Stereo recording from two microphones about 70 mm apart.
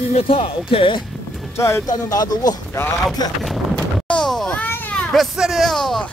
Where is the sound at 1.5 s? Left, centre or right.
Left.